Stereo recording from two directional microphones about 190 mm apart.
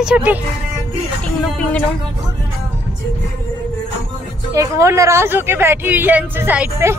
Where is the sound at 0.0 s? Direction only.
5° right (ahead or behind).